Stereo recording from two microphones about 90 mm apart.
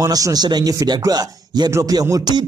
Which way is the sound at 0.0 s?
40° right (ahead or behind).